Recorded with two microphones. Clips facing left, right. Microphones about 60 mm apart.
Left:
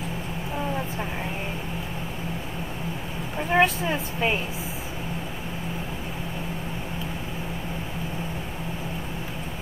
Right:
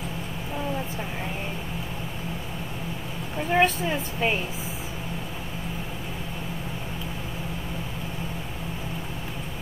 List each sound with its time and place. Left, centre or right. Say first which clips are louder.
3.3 s a woman's voice: left 1 dB; centre